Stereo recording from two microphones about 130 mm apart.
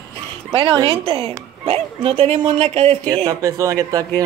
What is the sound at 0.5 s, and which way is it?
Speech, 40° right (ahead or behind).